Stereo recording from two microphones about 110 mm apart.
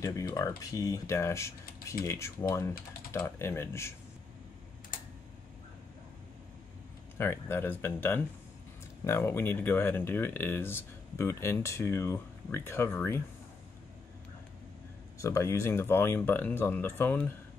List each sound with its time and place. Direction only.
0.0 s speech: 30° left (ahead or behind)
7.2 s speech: 20° left (ahead or behind)
15.1 s speech: 25° left (ahead or behind)